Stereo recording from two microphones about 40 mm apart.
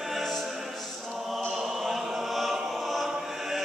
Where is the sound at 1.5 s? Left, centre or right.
Centre.